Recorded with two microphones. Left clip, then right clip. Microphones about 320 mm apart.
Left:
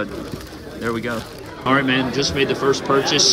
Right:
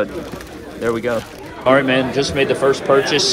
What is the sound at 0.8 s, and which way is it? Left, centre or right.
A man's voice, centre.